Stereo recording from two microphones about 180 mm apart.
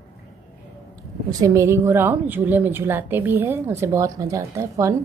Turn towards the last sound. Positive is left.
turn(degrees=-15)  # may be behind; listen again after turning